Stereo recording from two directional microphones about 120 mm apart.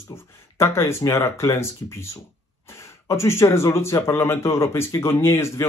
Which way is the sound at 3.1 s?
25° left (ahead or behind).